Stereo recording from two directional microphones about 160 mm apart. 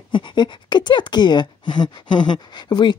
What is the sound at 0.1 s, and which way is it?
Speech, 30° left (ahead or behind).